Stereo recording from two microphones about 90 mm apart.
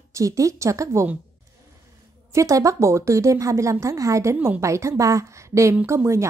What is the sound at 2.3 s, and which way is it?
A woman's voice, 35° right (ahead or behind).